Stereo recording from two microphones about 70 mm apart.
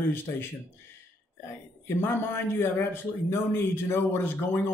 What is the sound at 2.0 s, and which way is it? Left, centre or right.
A man's voice, left.